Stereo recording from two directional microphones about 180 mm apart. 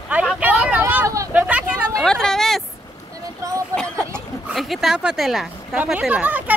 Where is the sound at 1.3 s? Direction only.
10° right (ahead or behind).